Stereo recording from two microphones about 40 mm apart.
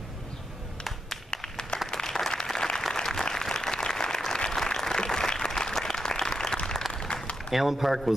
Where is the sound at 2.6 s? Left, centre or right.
Centre.